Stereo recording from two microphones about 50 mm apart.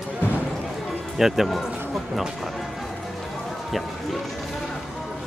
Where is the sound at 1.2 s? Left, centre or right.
Centre.